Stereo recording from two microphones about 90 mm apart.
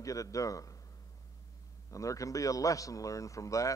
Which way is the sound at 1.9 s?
35° left (ahead or behind).